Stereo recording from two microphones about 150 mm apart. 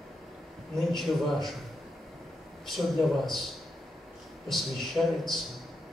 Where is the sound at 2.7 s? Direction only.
Centre (ahead or behind).